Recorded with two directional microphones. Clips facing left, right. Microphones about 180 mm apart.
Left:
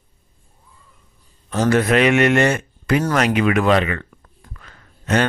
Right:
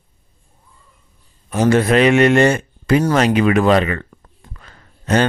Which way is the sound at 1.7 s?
30° right (ahead or behind).